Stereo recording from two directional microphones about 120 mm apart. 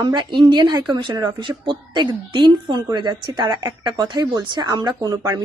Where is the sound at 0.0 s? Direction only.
40° right (ahead or behind).